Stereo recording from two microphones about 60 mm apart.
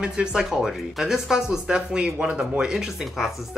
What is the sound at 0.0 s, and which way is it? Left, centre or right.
Speech, centre.